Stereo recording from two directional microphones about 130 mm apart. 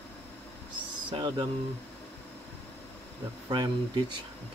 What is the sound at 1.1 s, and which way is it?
Speech, 35° right (ahead or behind).